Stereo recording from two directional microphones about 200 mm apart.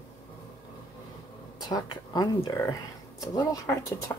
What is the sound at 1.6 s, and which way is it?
Speech, 20° left (ahead or behind).